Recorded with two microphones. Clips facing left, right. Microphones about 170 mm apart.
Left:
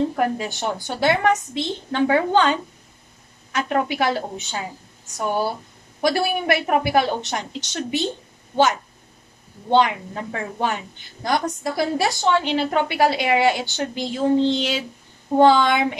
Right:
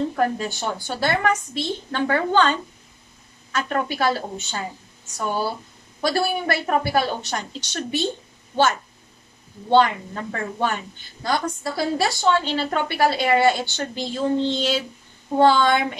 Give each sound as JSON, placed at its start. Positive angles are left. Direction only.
{"t": 0.1, "sound": "a woman's voice", "side_deg": 15}
{"t": 6.0, "sound": "a woman's voice", "side_deg": 15}
{"t": 9.7, "sound": "a woman's voice", "side_deg": 15}